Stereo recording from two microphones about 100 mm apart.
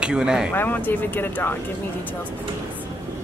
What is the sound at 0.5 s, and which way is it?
Speech, 20° left (ahead or behind).